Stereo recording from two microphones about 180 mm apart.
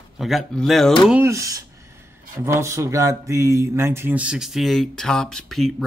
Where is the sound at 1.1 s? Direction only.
15° right (ahead or behind).